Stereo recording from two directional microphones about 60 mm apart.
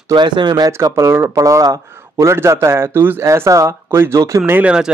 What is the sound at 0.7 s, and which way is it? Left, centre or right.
Speech, right.